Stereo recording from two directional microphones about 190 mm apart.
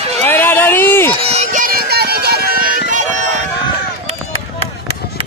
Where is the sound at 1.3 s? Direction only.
40° right (ahead or behind).